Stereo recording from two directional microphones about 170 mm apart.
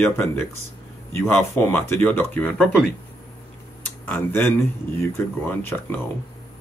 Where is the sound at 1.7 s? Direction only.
15° left (ahead or behind).